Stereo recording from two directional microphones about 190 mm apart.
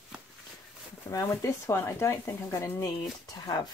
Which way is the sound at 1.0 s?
15° left (ahead or behind).